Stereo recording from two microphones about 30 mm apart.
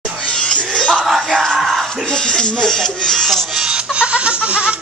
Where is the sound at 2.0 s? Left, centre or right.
Left.